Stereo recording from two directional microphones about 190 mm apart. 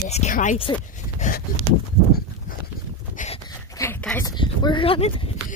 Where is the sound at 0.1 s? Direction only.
40° left (ahead or behind).